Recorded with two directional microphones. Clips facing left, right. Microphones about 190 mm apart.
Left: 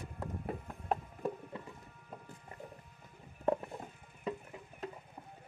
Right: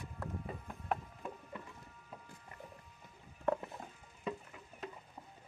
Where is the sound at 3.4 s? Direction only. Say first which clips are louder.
Left 2 dB; 20° left (ahead or behind).